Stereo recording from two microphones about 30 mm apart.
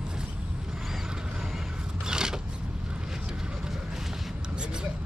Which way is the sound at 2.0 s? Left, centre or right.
Right.